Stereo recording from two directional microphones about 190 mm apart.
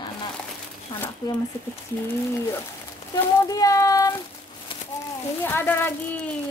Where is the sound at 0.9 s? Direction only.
25° left (ahead or behind).